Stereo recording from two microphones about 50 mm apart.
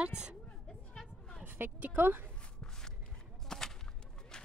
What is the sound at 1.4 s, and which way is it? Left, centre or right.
Speech, right.